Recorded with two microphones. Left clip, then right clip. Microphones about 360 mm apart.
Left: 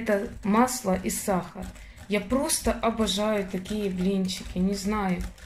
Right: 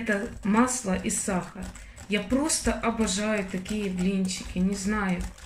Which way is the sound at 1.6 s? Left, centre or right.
Left.